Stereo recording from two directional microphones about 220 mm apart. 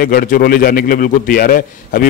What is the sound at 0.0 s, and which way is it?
A man's voice, 40° left (ahead or behind).